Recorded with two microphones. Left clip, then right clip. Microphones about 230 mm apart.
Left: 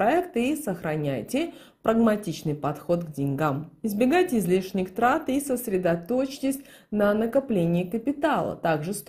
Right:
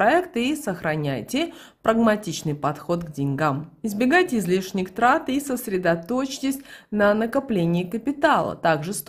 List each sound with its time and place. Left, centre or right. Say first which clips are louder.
0.0 s a woman's voice: right 3 dB; centre